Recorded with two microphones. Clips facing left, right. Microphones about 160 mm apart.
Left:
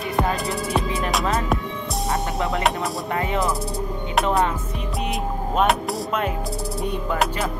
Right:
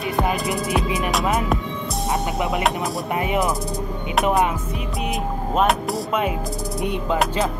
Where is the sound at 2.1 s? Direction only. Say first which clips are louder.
Right 2 dB; 20° right (ahead or behind).